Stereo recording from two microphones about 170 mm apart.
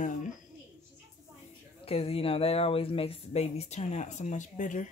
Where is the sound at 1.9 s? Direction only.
35° left (ahead or behind).